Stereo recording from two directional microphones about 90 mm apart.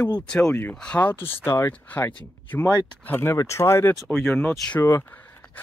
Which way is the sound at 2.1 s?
15° left (ahead or behind).